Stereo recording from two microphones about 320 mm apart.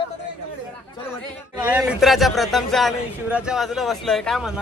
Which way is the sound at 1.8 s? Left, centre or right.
Centre.